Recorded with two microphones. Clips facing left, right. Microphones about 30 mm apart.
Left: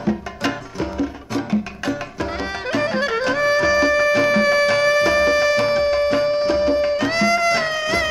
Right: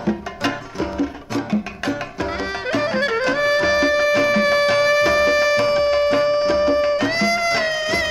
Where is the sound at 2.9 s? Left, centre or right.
Centre.